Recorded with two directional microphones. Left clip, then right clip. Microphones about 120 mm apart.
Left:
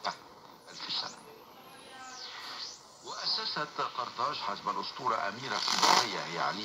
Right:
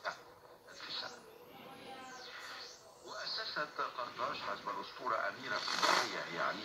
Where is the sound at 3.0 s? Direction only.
25° left (ahead or behind).